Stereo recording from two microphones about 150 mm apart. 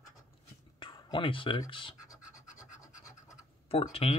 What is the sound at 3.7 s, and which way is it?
Speech, 40° left (ahead or behind).